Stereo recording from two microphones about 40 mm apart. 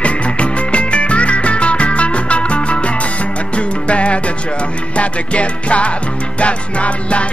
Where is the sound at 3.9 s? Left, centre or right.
Left.